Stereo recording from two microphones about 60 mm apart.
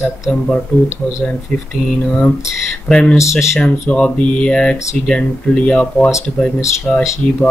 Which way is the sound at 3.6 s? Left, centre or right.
Centre.